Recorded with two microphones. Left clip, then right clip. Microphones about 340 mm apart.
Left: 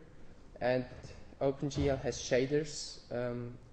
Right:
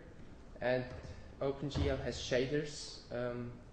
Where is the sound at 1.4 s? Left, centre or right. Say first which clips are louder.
Left 4 dB; left.